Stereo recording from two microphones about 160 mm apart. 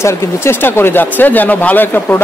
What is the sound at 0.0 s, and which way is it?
Speech, 15° left (ahead or behind).